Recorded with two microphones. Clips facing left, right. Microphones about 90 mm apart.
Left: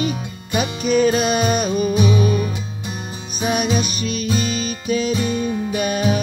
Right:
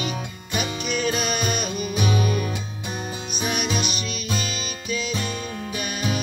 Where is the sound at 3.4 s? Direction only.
40° left (ahead or behind).